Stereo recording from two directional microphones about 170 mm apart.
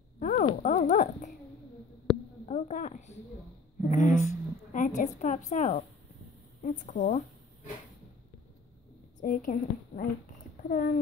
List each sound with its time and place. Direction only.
0.2 s a sound: 50° left (ahead or behind)
2.4 s a woman's voice: 45° left (ahead or behind)
9.2 s a woman's voice: 50° left (ahead or behind)